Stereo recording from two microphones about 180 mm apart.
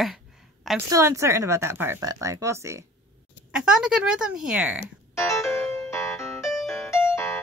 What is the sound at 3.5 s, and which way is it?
Speech, 5° right (ahead or behind).